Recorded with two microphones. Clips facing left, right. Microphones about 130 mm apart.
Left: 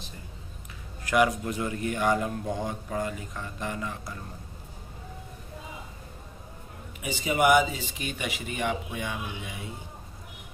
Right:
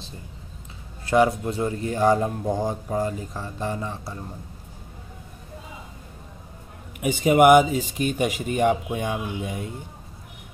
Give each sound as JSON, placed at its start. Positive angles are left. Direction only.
{"t": 1.0, "sound": "speech", "side_deg": -30}
{"t": 7.0, "sound": "speech", "side_deg": -55}